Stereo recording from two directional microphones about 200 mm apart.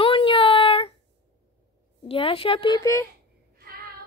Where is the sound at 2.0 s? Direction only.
25° left (ahead or behind).